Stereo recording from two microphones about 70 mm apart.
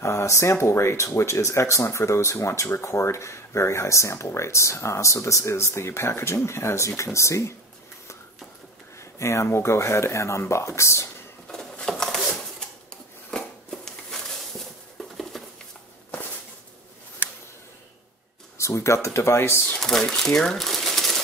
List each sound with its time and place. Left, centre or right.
0.0 s speech: left
9.2 s speech: left
11.4 s a sound: centre
15.0 s patter: centre
18.6 s speech: left
19.8 s speech: centre